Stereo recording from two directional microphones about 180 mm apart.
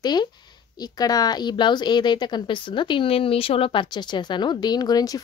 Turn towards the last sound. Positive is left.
turn(degrees=20)  # may be behind; listen again after turning